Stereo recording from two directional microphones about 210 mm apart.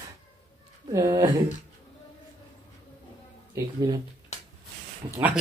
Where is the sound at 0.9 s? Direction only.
20° right (ahead or behind).